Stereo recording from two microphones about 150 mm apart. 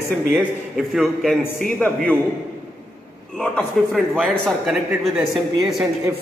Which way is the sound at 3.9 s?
5° left (ahead or behind).